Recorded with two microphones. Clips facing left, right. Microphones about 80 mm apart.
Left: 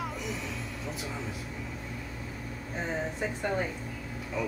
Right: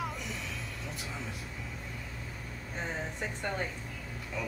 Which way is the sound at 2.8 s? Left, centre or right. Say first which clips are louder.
Left 4 dB; centre.